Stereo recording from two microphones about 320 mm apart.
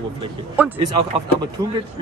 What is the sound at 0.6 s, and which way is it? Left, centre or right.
Speech, centre.